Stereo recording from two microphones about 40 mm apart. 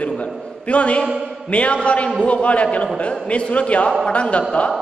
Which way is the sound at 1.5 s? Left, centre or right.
Left.